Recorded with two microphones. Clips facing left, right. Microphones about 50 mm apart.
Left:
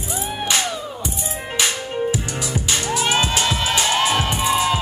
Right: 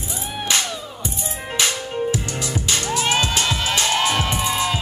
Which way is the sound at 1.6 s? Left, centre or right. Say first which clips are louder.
Even; centre.